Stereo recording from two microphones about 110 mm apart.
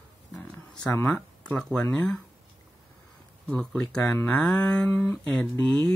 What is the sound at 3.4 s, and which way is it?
Speech, 5° left (ahead or behind).